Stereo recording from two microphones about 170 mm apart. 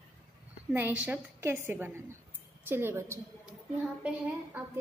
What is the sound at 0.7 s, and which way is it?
A woman's voice, 10° right (ahead or behind).